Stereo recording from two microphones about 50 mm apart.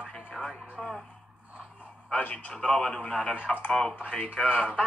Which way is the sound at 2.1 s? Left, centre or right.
Left.